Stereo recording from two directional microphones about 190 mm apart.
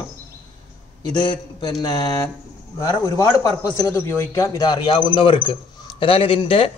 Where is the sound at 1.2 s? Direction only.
25° left (ahead or behind).